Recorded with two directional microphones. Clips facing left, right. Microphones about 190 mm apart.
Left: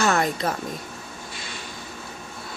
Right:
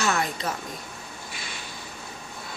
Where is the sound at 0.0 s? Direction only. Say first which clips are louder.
Left 5 dB; 50° left (ahead or behind).